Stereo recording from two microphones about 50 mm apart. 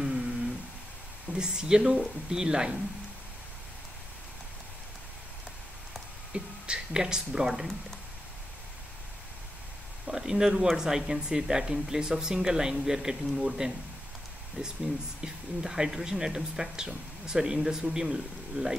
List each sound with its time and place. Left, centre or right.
0.0 s humming: centre
1.3 s speech: centre
6.3 s speech: centre
10.0 s speech: centre
14.6 s speech: right
15.2 s speech: centre